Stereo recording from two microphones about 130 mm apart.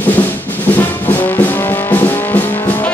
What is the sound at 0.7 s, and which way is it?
Music, 15° left (ahead or behind).